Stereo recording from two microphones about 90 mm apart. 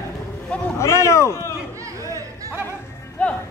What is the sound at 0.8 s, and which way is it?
Speech, 30° left (ahead or behind).